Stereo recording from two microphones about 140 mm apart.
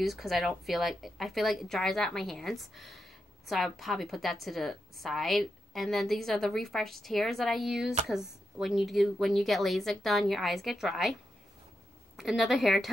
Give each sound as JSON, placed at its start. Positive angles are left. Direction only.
{"t": 0.0, "sound": "a woman's voice", "side_deg": 0}
{"t": 12.2, "sound": "a woman's voice", "side_deg": 0}